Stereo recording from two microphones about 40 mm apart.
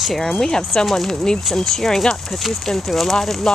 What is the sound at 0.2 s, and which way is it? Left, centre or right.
Speech, centre.